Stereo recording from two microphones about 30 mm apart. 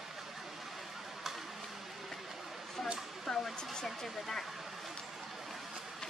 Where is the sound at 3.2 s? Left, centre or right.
Centre.